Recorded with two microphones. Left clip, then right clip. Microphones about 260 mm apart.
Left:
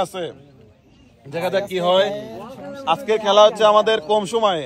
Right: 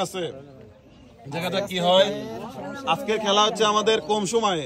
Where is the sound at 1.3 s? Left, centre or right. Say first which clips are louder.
Left 5 dB; centre.